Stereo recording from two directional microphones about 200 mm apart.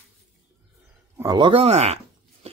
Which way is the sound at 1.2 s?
20° right (ahead or behind).